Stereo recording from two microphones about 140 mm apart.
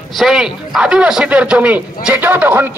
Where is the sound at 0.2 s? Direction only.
5° right (ahead or behind).